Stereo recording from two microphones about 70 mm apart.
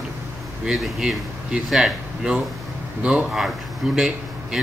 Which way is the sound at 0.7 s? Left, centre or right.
Centre.